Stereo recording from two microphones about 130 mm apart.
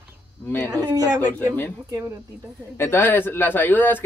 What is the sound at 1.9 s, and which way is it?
Speech, 20° right (ahead or behind).